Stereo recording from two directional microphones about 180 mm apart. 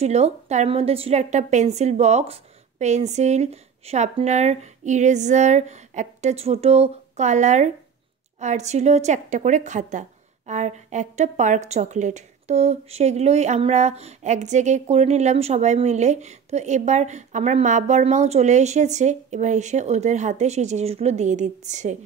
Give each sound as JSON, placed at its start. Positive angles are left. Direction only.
{"t": 0.0, "sound": "a woman's voice", "side_deg": -35}